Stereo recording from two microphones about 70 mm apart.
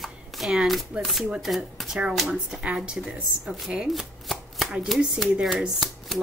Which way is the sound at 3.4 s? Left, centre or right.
Centre.